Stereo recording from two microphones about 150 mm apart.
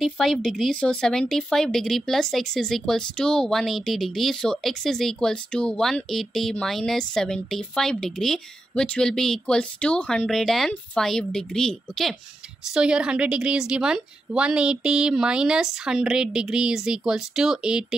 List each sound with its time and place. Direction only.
0.0 s speech: centre (ahead or behind)